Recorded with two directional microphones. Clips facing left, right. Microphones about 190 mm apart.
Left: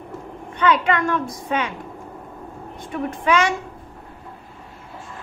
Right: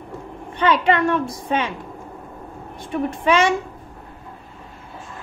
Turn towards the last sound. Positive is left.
turn(degrees=-25)  # may be behind; listen again after turning